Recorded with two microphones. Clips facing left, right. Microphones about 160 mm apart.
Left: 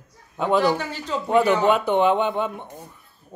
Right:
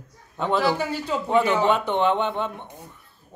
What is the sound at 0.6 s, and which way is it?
Speech, 10° right (ahead or behind).